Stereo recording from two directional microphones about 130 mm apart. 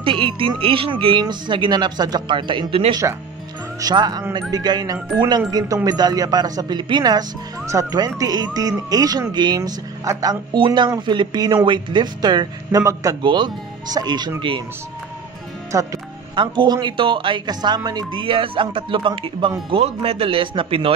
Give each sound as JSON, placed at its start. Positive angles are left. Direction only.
{"t": 0.0, "sound": "speech", "side_deg": -45}
{"t": 3.0, "sound": "speech", "side_deg": -25}
{"t": 13.2, "sound": "speech", "side_deg": -35}
{"t": 15.7, "sound": "speech", "side_deg": -25}
{"t": 16.3, "sound": "a man's voice", "side_deg": -35}